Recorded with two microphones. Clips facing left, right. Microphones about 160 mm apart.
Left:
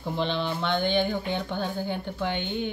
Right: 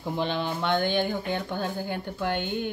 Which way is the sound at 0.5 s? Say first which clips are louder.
Even; 10° right (ahead or behind).